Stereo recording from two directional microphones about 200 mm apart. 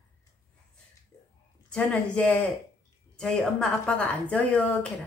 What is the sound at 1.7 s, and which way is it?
Speech, 5° left (ahead or behind).